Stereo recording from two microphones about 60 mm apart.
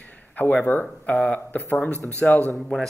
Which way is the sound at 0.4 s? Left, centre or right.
Left.